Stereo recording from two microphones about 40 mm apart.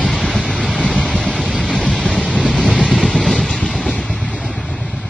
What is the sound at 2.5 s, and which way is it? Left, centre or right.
Vehicle, centre.